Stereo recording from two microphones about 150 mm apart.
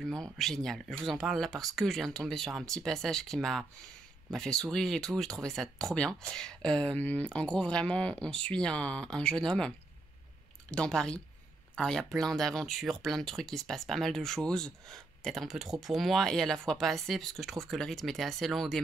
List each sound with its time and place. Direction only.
0.0 s speech: 5° left (ahead or behind)